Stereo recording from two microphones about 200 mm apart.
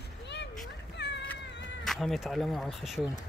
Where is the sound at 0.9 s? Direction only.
60° left (ahead or behind).